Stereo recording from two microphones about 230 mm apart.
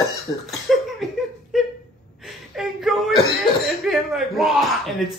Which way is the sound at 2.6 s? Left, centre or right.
Centre.